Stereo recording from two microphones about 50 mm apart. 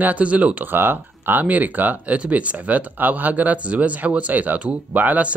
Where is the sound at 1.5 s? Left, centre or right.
Right.